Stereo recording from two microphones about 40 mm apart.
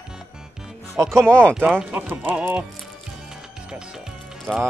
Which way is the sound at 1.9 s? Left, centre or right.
Right.